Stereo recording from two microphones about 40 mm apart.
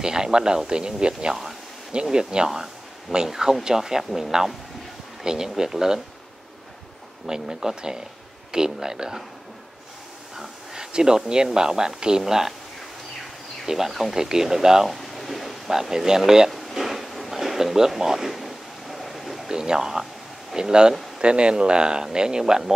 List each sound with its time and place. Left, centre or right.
0.0 s speech: centre
7.2 s speech: centre
10.3 s a sound: centre
11.4 s speech: centre
13.7 s speech: centre
14.9 s speech: centre
16.5 s a sound: centre
19.5 s speech: centre